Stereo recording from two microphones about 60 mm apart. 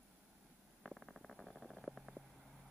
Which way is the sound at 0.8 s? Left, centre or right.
Centre.